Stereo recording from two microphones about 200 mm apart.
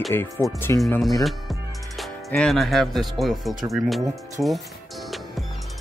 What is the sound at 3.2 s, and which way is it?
Speech, centre (ahead or behind).